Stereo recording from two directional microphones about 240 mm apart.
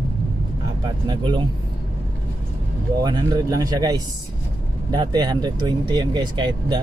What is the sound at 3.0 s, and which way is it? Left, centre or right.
Speech, centre.